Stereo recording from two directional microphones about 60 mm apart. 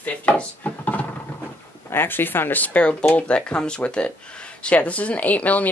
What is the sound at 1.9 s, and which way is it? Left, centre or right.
Speech, left.